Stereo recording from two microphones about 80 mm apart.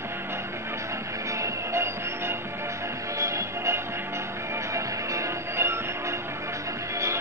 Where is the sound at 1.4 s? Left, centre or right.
Right.